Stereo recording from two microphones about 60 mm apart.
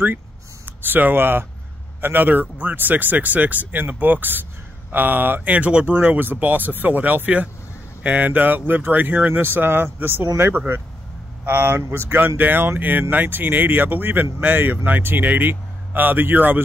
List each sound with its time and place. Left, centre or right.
0.7 s speech: right
5.5 s speech: right
11.4 s speech: right